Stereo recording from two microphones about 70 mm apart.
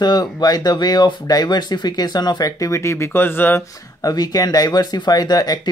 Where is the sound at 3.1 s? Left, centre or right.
Left.